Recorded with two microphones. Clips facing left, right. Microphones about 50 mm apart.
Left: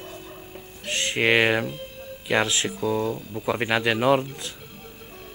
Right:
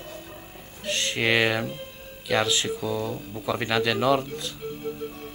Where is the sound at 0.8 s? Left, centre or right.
Centre.